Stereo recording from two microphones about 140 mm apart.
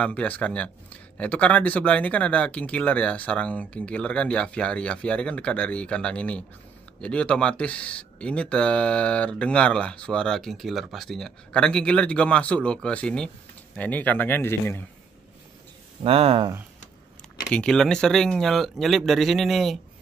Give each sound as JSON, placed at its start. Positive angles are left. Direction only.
{"t": 0.0, "sound": "speech", "side_deg": 10}
{"t": 16.0, "sound": "speech", "side_deg": -45}
{"t": 17.5, "sound": "speech", "side_deg": 5}